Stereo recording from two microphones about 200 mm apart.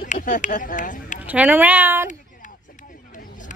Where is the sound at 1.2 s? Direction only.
5° right (ahead or behind).